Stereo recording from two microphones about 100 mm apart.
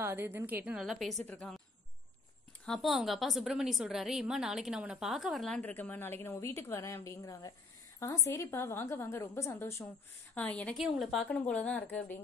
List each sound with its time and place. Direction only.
0.0 s a woman's voice: 20° right (ahead or behind)
0.7 s a woman's voice: centre (ahead or behind)
2.6 s a woman's voice: 5° left (ahead or behind)
5.6 s a woman's voice: 15° left (ahead or behind)
10.3 s a woman's voice: 15° left (ahead or behind)
10.8 s a woman's voice: centre (ahead or behind)
11.2 s a woman's voice: 15° left (ahead or behind)